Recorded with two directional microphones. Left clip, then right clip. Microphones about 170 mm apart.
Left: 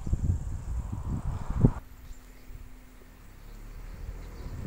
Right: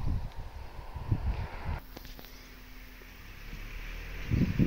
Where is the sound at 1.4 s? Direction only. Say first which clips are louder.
Left 10 dB; 65° right (ahead or behind).